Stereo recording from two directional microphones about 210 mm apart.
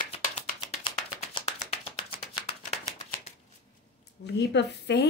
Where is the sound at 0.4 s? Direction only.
25° left (ahead or behind).